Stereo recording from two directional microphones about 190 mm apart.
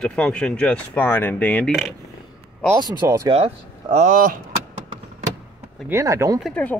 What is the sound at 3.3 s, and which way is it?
Speech, 35° right (ahead or behind).